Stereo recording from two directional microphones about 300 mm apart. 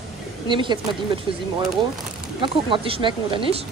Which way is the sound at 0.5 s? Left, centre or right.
Centre.